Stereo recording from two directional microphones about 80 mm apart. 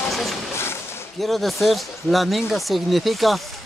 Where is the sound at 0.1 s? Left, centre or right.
Centre.